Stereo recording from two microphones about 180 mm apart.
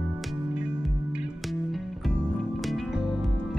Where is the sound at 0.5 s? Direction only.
5° right (ahead or behind).